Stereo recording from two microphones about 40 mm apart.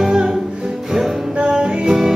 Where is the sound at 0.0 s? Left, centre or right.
Centre.